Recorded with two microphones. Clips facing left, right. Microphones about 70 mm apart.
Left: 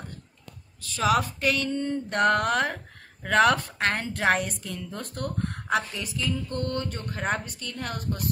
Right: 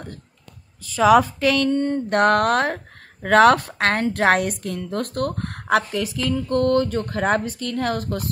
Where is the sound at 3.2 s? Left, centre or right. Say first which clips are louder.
Right 7 dB; right.